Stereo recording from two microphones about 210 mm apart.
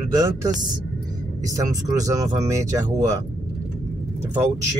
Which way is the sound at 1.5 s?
15° right (ahead or behind).